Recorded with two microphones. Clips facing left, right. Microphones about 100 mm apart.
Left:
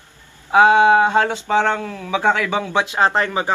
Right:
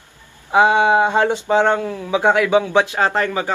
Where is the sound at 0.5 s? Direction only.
15° right (ahead or behind).